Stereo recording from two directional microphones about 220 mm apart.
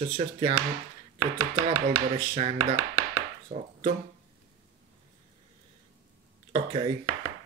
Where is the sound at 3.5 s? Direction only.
30° right (ahead or behind).